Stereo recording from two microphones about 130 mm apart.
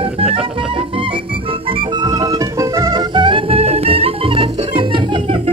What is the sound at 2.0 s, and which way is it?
Music, 25° right (ahead or behind).